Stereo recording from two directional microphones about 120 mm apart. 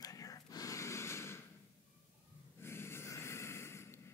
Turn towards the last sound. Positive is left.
turn(degrees=20)  # may be behind; listen again after turning